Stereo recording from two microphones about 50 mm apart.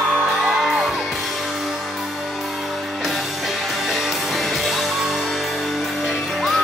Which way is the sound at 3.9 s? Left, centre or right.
Centre.